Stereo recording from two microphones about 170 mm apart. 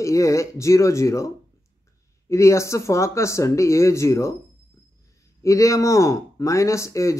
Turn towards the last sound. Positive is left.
turn(degrees=15)  # may be behind; listen again after turning